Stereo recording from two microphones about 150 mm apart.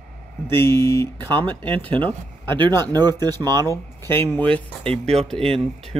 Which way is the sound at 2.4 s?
30° right (ahead or behind).